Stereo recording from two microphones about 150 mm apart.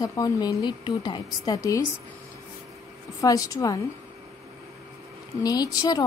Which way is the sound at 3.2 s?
25° left (ahead or behind).